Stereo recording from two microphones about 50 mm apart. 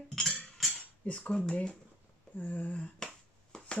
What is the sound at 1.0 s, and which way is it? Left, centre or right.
Cutlery, left.